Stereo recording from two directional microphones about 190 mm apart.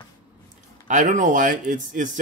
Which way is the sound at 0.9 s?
40° right (ahead or behind).